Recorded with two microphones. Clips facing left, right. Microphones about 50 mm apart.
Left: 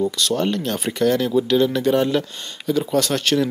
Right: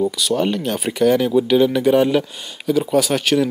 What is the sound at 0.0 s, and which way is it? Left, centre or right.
Speech, centre.